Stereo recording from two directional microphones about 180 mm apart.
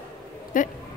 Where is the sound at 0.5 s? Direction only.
45° left (ahead or behind).